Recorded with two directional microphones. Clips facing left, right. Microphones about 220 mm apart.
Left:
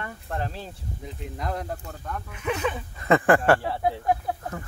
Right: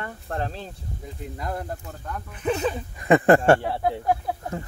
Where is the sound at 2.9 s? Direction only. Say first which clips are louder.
Right 3 dB; 20° right (ahead or behind).